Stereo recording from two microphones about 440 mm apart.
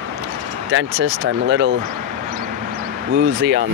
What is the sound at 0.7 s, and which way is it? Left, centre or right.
Speech, right.